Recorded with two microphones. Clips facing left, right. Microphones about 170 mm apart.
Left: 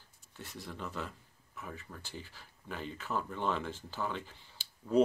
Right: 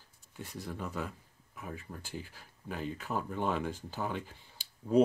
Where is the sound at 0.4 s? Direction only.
10° right (ahead or behind).